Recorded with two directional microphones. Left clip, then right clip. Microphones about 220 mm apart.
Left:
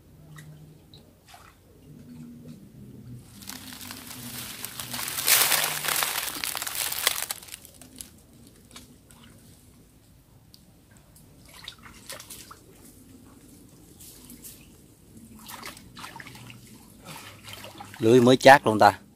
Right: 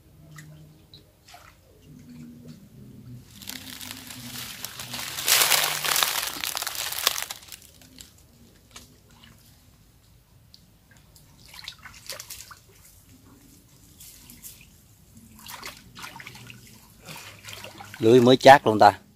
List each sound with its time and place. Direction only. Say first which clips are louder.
3.4 s crumpling: right 3 dB; centre (ahead or behind)
5.2 s crumpling: right 2 dB; 10° right (ahead or behind)
7.2 s crumpling: left 1 dB; 20° left (ahead or behind)
11.5 s bathtub: right 3 dB; 15° right (ahead or behind)
15.4 s trickle: right 2 dB; centre (ahead or behind)
17.0 s a sound: right 2 dB; centre (ahead or behind)